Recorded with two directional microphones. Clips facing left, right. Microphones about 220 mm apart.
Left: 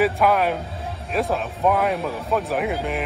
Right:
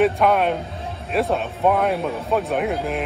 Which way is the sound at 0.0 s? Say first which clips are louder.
Right 2 dB; centre (ahead or behind).